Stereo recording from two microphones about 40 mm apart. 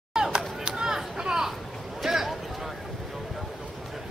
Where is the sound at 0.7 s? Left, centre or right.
Centre.